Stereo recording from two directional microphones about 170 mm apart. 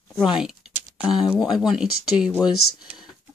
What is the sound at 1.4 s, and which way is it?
Speech, centre (ahead or behind).